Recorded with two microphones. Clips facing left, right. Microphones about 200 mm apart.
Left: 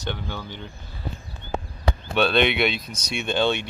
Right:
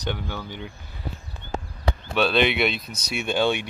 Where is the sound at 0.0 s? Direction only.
10° right (ahead or behind).